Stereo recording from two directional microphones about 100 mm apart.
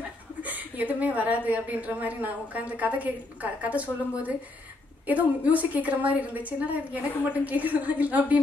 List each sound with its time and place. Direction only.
0.4 s a woman's voice: 15° right (ahead or behind)
5.0 s a woman's voice: 15° right (ahead or behind)